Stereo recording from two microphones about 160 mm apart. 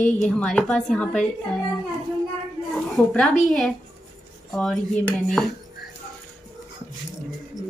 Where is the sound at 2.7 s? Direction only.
Centre (ahead or behind).